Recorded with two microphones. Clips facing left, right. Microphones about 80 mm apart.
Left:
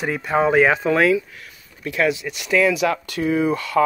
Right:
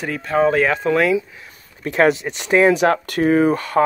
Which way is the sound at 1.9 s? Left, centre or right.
Right.